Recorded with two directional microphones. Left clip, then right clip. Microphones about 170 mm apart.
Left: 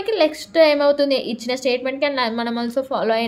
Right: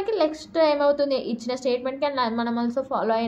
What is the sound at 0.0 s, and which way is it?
A woman's voice, 30° left (ahead or behind).